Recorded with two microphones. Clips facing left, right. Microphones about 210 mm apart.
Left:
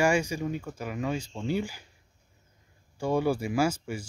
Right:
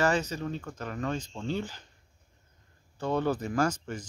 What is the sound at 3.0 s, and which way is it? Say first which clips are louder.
Speech: left 2 dB; 10° left (ahead or behind).